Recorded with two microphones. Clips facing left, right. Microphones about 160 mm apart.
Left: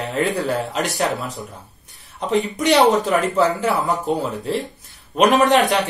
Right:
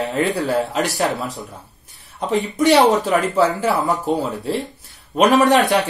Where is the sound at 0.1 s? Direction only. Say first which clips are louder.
Left 1 dB; centre (ahead or behind).